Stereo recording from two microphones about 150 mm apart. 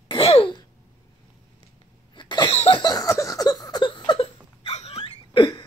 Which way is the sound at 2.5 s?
40° left (ahead or behind).